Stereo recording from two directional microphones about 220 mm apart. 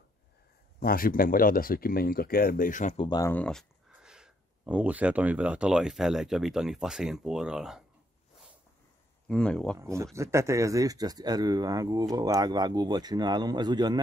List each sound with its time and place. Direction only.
0.7 s speech: 40° left (ahead or behind)
3.1 s speech: 15° left (ahead or behind); by 7.8 s 5° right (ahead or behind)
9.3 s speech: 5° left (ahead or behind)
9.8 s speech: 15° right (ahead or behind)